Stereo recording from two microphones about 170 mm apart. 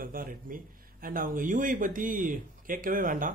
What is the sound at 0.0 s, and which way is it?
A man's voice, 55° right (ahead or behind).